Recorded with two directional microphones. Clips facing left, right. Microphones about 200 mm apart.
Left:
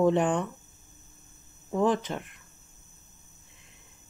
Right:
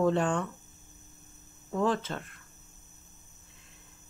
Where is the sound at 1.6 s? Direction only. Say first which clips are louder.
Left 3 dB; 20° left (ahead or behind).